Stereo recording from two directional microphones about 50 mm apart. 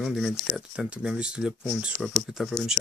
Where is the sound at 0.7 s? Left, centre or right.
Centre.